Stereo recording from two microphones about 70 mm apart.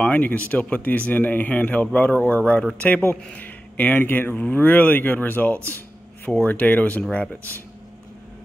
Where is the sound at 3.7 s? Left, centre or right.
Left.